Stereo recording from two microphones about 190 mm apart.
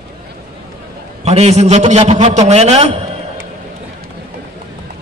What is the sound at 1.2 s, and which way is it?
A man's voice, 35° right (ahead or behind).